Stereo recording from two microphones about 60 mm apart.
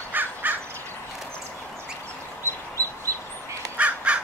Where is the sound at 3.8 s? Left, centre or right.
Right.